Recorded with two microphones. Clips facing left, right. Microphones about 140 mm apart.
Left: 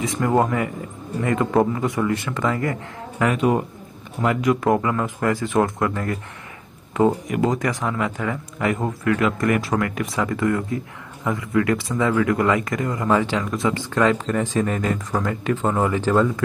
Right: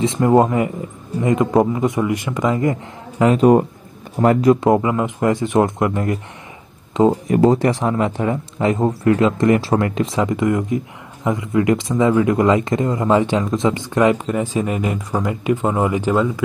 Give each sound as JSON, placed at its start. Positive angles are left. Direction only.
{"t": 0.0, "sound": "a man's voice", "side_deg": -25}
{"t": 3.3, "sound": "a man's voice", "side_deg": -45}
{"t": 7.2, "sound": "speech", "side_deg": -30}